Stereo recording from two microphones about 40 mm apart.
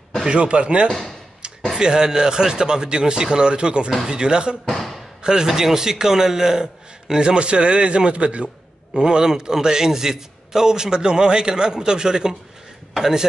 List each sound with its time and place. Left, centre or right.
0.3 s speech: right
0.8 s speech: centre
1.4 s a sound: right
1.8 s a man's voice: centre
4.6 s a sound: centre
5.2 s a man's voice: centre
8.9 s a man's voice: centre